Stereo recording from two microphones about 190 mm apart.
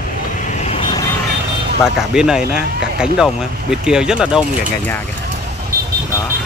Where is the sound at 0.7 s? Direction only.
25° left (ahead or behind).